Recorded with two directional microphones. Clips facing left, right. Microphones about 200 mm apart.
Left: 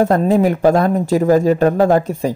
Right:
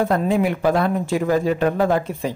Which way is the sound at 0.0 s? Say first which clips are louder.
Left 5 dB; 40° left (ahead or behind).